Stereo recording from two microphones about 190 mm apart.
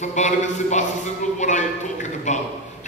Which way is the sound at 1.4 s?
40° left (ahead or behind).